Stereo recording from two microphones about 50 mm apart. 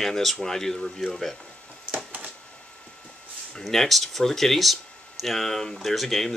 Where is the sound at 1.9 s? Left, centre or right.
Right.